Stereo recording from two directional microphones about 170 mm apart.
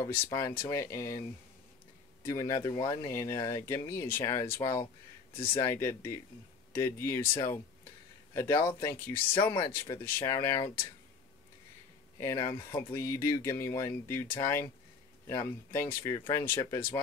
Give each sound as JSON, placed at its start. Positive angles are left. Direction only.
{"t": 0.1, "sound": "speech", "side_deg": 15}
{"t": 2.2, "sound": "speech", "side_deg": 20}
{"t": 5.6, "sound": "speech", "side_deg": 15}
{"t": 9.3, "sound": "speech", "side_deg": 25}
{"t": 9.7, "sound": "speech", "side_deg": 15}
{"t": 12.4, "sound": "speech", "side_deg": 15}